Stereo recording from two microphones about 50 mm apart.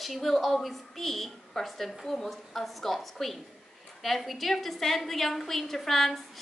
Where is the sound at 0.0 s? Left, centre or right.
Centre.